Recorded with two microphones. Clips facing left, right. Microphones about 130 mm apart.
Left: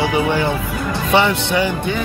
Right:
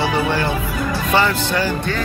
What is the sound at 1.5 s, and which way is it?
Speech, 15° left (ahead or behind).